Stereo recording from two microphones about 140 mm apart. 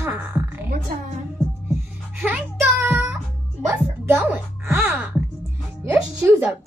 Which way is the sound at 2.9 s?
5° right (ahead or behind).